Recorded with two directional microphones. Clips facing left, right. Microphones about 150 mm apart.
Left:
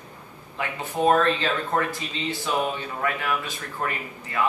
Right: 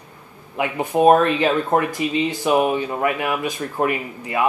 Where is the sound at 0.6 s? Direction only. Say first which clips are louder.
Right 8 dB; 15° right (ahead or behind).